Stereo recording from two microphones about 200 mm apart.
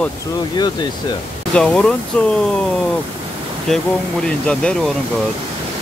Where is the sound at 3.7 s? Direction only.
Centre (ahead or behind).